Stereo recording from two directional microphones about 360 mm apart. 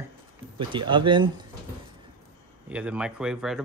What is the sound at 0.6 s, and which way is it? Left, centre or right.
Speech, centre.